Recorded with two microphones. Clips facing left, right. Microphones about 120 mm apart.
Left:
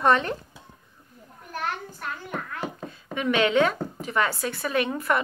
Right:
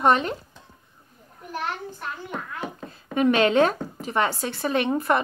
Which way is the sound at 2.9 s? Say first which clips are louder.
Right 6 dB; 35° right (ahead or behind).